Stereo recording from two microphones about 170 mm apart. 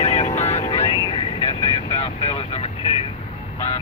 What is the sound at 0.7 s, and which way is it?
Vehicle, 25° left (ahead or behind).